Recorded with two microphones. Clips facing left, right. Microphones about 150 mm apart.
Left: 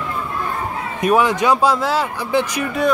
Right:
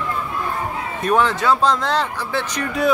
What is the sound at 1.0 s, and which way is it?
Speech, 10° left (ahead or behind).